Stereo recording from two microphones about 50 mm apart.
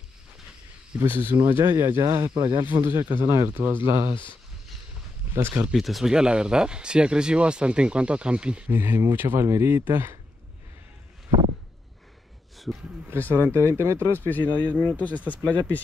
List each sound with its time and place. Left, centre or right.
0.9 s speech: right
5.3 s speech: right
5.7 s speech: centre
6.0 s speech: centre
8.6 s speech: right
9.5 s speech: right
12.7 s speech: centre
13.2 s speech: left
13.5 s speech: right
14.2 s speech: left
14.7 s speech: right
15.0 s speech: left